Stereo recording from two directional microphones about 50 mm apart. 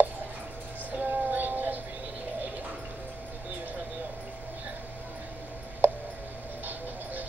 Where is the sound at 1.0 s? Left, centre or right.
Right.